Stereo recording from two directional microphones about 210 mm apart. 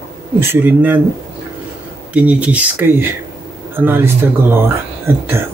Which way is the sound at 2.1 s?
5° right (ahead or behind).